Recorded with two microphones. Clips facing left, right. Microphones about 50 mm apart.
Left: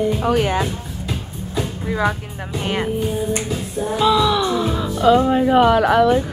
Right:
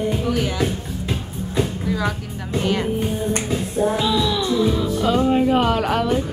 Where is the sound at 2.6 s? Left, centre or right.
Left.